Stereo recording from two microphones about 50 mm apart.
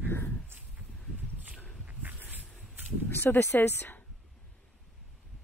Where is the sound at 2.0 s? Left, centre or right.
Right.